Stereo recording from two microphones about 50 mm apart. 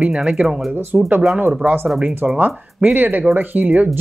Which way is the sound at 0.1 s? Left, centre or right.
Centre.